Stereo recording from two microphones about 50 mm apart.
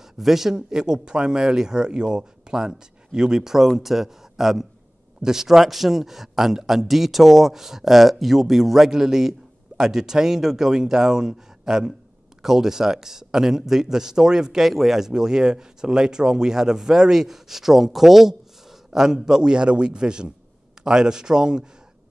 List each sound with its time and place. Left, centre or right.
0.2 s speech: centre